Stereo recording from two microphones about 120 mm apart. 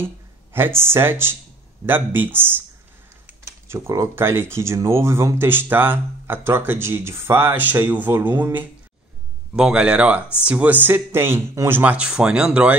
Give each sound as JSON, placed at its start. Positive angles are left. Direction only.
{"t": 0.0, "sound": "speech", "side_deg": -20}
{"t": 3.6, "sound": "speech", "side_deg": -20}